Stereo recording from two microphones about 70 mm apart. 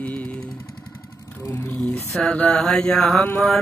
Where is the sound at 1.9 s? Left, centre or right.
Centre.